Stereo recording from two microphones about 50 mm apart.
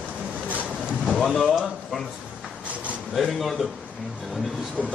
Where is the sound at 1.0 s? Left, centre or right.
Centre.